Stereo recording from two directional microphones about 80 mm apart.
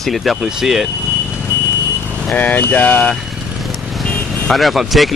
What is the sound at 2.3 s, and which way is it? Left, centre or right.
Speech, left.